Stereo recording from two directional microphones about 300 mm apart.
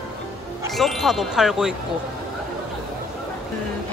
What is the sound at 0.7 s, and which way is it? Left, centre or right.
Speech, centre.